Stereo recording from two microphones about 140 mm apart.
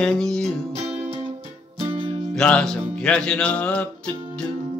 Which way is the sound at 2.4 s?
5° left (ahead or behind).